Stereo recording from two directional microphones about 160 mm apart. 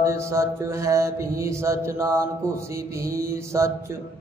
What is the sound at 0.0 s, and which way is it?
Mantra, 15° right (ahead or behind).